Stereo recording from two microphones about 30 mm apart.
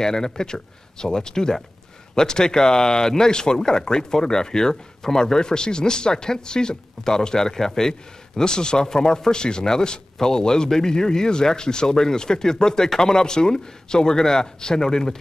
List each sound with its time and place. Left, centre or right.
0.0 s speech: centre
8.4 s speech: left